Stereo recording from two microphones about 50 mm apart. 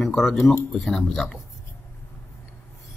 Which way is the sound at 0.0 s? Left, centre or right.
Centre.